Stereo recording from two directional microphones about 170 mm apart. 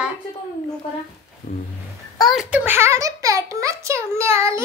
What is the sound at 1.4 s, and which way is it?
Roaring cats, 55° left (ahead or behind).